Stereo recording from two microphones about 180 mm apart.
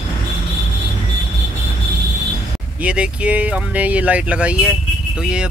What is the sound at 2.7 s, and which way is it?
Speech, 5° right (ahead or behind).